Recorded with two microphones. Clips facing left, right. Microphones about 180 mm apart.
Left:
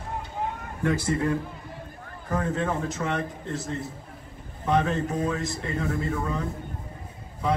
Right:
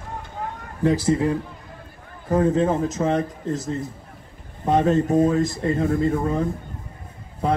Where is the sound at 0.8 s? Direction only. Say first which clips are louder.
Right 6 dB; 30° right (ahead or behind).